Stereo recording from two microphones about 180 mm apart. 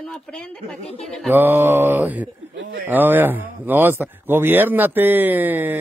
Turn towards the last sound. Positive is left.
turn(degrees=-10)  # may be behind; listen again after turning